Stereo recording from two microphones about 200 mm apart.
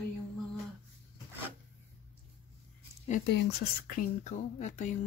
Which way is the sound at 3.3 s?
50° left (ahead or behind).